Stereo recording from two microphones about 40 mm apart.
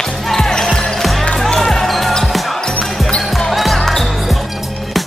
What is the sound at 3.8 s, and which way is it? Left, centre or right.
Basketball bounce, centre.